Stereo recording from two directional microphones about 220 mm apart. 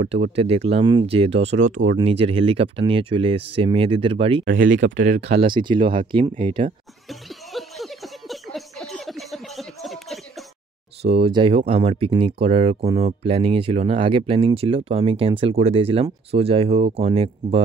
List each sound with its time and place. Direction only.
0.0 s speech: 30° right (ahead or behind)
4.7 s speech: 55° right (ahead or behind)
5.3 s speech: 25° right (ahead or behind)
7.1 s a sound: centre (ahead or behind)
11.0 s speech: 25° right (ahead or behind)